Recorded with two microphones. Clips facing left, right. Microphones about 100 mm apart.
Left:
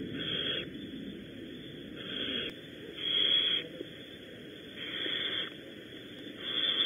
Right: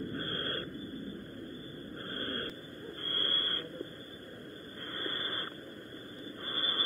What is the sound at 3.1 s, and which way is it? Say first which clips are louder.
Radio: left 1 dB; 25° right (ahead or behind).